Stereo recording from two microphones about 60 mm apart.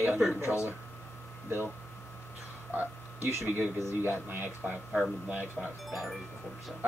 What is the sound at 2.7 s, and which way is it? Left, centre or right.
Speech, right.